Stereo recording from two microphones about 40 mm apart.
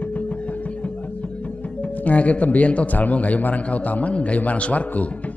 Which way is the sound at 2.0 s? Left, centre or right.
Left.